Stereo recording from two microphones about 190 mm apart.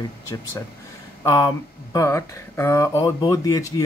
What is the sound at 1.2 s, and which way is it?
Speech, 20° left (ahead or behind).